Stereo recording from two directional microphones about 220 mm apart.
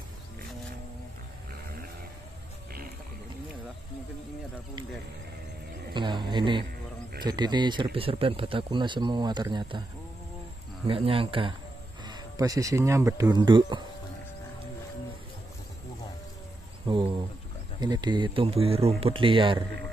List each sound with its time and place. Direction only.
5.9 s speech: 20° right (ahead or behind)
10.9 s speech: 25° right (ahead or behind)
16.8 s speech: 20° right (ahead or behind)